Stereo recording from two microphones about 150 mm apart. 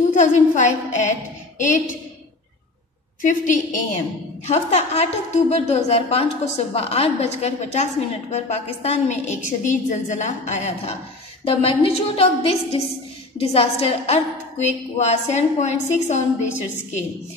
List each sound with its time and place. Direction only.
0.1 s a woman's voice: 55° left (ahead or behind)
3.2 s a woman's voice: 60° left (ahead or behind)
4.5 s a woman's voice: 45° left (ahead or behind)
11.4 s a woman's voice: 40° left (ahead or behind)